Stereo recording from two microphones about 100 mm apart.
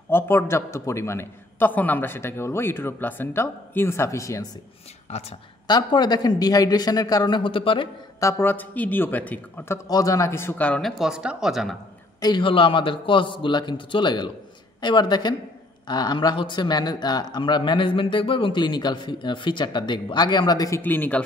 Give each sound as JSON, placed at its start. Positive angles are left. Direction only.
{"t": 0.1, "sound": "a man's voice", "side_deg": 25}
{"t": 5.7, "sound": "speech", "side_deg": 45}
{"t": 8.2, "sound": "a man's voice", "side_deg": 30}
{"t": 9.8, "sound": "a man's voice", "side_deg": 35}
{"t": 10.8, "sound": "speech", "side_deg": 0}
{"t": 12.2, "sound": "a man's voice", "side_deg": 55}
{"t": 20.8, "sound": "a man's voice", "side_deg": 20}